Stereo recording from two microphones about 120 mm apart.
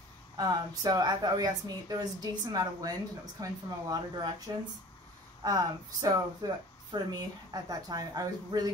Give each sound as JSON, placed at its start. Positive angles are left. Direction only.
{"t": 0.4, "sound": "speech", "side_deg": -35}